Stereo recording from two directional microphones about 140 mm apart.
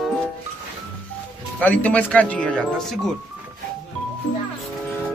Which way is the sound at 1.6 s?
10° left (ahead or behind).